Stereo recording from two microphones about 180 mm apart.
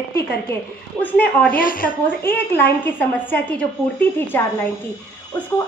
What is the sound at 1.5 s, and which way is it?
Speech, 50° left (ahead or behind).